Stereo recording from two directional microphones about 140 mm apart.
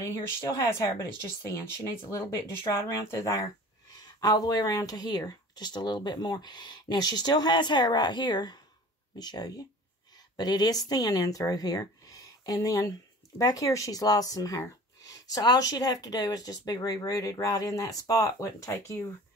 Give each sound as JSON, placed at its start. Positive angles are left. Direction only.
{"t": 0.0, "sound": "speech", "side_deg": 20}